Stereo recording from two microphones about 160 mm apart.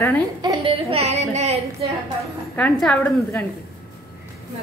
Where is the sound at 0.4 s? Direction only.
30° right (ahead or behind).